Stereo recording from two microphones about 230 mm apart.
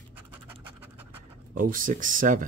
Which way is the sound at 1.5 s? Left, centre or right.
Right.